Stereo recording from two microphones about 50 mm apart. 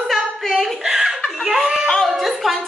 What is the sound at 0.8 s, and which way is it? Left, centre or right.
Chuckle, centre.